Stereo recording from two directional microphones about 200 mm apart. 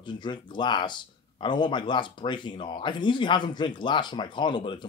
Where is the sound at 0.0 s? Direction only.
20° left (ahead or behind).